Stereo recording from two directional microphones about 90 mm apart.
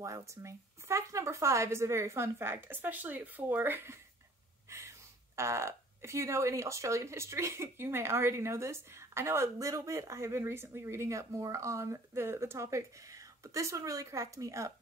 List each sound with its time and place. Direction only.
0.0 s a woman's voice: 35° right (ahead or behind)